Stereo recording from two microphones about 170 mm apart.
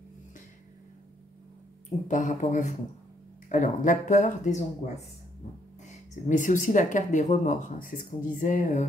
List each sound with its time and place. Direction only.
2.0 s speech: 45° left (ahead or behind)